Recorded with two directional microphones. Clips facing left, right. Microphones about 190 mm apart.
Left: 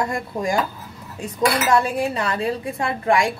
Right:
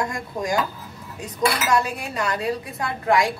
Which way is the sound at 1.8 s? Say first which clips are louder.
Left 5 dB; 30° left (ahead or behind).